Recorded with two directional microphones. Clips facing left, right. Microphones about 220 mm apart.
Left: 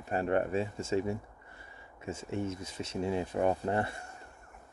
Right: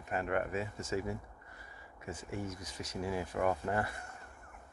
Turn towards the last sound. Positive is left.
turn(degrees=25)  # may be behind; listen again after turning